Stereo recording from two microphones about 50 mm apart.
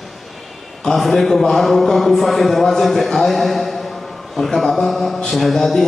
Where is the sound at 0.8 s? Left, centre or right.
Centre.